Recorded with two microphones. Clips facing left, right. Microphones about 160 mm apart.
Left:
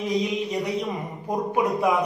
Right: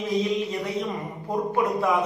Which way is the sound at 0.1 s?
15° left (ahead or behind).